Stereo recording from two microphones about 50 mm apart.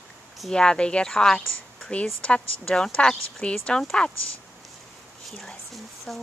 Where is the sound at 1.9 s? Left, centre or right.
Left.